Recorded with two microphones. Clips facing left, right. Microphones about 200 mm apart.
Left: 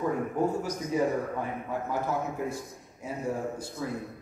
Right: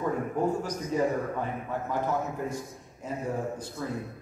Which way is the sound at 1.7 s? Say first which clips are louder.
Right 1 dB; 10° left (ahead or behind).